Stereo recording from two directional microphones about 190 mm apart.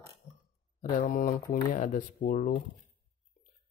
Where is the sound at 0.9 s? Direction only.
45° left (ahead or behind).